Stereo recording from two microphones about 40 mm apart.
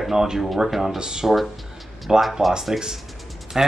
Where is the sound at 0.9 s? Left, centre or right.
Centre.